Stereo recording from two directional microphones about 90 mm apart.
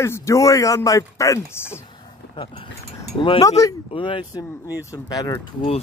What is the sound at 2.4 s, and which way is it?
Speech, 60° left (ahead or behind).